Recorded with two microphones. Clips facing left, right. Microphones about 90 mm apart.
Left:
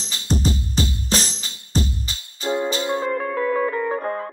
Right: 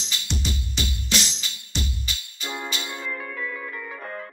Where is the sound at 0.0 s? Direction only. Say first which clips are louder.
Left 8 dB; 40° left (ahead or behind).